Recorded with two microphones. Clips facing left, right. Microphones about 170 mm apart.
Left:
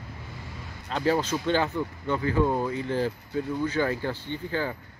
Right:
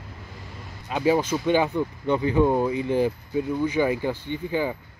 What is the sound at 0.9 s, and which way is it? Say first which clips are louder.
Speech: right 3 dB; 10° right (ahead or behind).